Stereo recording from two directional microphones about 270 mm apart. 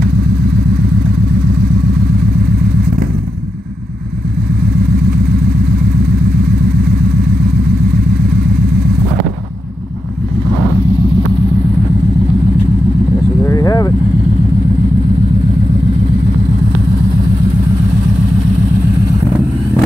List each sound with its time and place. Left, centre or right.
13.4 s vehicle: centre